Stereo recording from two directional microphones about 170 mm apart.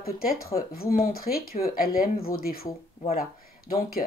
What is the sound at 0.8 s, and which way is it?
Speech, 60° left (ahead or behind).